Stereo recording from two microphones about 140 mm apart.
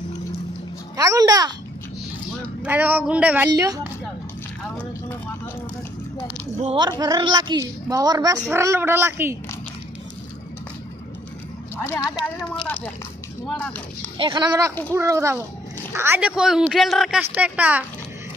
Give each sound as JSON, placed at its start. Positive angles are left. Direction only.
{"t": 0.9, "sound": "a woman's voice", "side_deg": -25}
{"t": 2.6, "sound": "speech", "side_deg": -10}
{"t": 3.4, "sound": "a woman's voice", "side_deg": -25}
{"t": 6.6, "sound": "speech", "side_deg": -40}
{"t": 6.9, "sound": "a woman's voice", "side_deg": -30}
{"t": 11.7, "sound": "speech", "side_deg": 20}
{"t": 14.1, "sound": "a woman's voice", "side_deg": -35}
{"t": 17.2, "sound": "speech", "side_deg": -10}